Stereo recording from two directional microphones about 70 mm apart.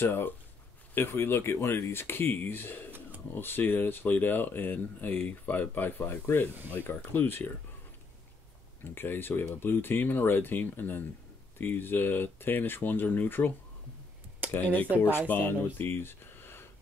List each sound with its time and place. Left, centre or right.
0.0 s speech: left
8.9 s speech: left
14.5 s speech: left